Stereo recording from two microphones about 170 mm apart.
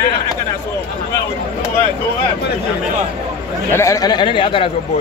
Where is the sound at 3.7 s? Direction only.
20° left (ahead or behind).